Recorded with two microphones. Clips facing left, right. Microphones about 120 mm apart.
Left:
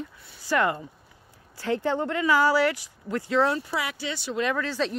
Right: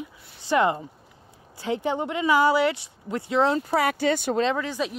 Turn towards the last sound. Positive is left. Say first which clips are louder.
# right 2 dB
turn(degrees=-15)  # may be behind; listen again after turning